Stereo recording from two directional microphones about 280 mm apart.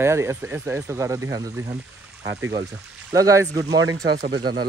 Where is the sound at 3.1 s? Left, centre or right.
Centre.